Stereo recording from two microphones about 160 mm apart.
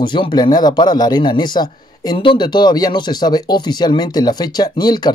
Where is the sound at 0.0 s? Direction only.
30° left (ahead or behind).